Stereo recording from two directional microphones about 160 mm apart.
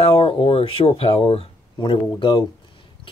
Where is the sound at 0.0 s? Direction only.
35° left (ahead or behind).